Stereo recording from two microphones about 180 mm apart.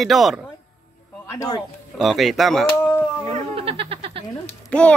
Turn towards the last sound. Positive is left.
turn(degrees=5)  # may be behind; listen again after turning